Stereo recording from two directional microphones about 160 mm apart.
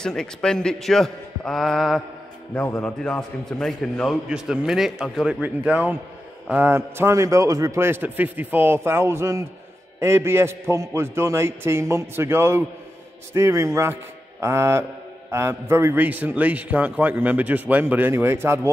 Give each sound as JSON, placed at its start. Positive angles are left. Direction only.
{"t": 0.0, "sound": "a man's voice", "side_deg": 5}